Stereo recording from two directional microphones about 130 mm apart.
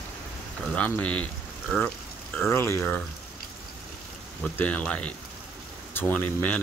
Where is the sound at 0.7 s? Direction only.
10° left (ahead or behind).